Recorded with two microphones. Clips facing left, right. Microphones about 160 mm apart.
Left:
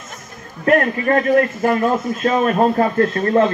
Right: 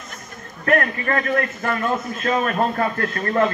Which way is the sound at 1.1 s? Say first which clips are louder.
Left 7 dB; 25° left (ahead or behind).